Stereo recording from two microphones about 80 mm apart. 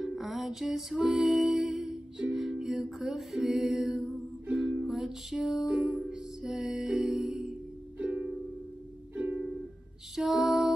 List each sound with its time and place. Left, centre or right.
0.0 s music: centre
6.1 s music: centre
8.0 s music: centre
10.1 s lullaby: centre